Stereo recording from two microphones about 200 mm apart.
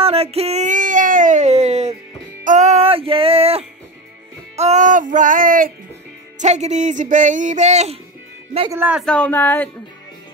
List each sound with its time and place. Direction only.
0.0 s a sound: 30° right (ahead or behind)
2.4 s music: 35° right (ahead or behind)
4.6 s speech: 35° right (ahead or behind)
8.7 s speech: 10° right (ahead or behind)
9.0 s speech: 5° left (ahead or behind)